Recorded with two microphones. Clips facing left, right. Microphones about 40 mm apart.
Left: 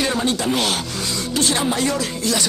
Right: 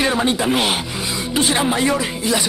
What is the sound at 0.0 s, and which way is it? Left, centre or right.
Speech, centre.